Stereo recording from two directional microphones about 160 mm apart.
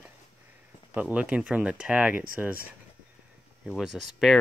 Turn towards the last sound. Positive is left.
turn(degrees=0)  # may be behind; listen again after turning